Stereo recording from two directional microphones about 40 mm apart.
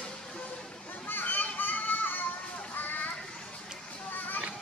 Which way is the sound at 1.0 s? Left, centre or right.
Left.